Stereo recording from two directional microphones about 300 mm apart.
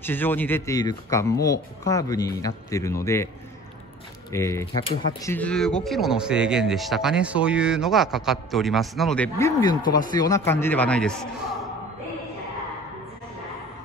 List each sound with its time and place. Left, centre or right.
0.0 s speech: centre
4.3 s speech: centre